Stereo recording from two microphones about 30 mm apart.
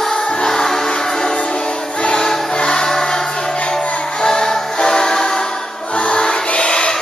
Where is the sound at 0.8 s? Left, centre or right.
Left.